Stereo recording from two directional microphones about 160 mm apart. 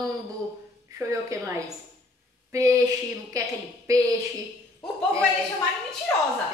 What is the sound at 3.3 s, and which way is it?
Speech, 20° right (ahead or behind).